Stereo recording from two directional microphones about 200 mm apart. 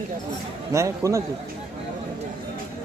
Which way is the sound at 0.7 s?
15° right (ahead or behind).